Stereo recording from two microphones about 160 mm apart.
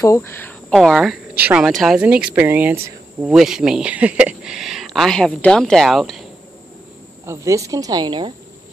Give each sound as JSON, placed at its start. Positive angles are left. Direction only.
{"t": 0.0, "sound": "speech", "side_deg": 20}
{"t": 7.2, "sound": "speech", "side_deg": -20}